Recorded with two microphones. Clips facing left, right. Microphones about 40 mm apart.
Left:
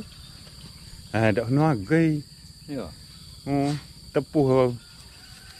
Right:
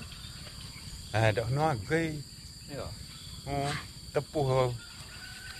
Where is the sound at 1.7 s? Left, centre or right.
Left.